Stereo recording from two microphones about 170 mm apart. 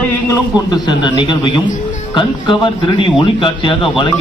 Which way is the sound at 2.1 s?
30° left (ahead or behind).